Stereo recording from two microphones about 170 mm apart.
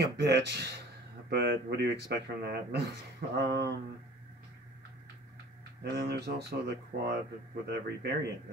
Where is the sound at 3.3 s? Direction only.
90° right.